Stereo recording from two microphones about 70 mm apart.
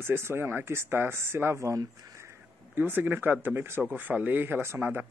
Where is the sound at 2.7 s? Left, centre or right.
Right.